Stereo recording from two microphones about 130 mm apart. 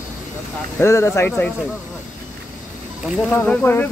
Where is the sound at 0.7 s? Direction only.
20° left (ahead or behind).